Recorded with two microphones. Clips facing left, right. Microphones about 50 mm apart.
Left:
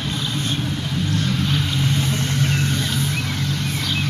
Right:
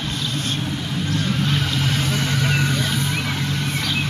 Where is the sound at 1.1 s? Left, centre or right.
Centre.